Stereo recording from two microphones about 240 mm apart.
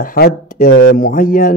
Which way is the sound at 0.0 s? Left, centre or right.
Left.